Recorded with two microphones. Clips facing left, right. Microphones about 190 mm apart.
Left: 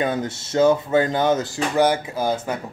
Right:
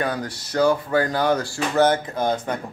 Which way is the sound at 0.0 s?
25° left (ahead or behind).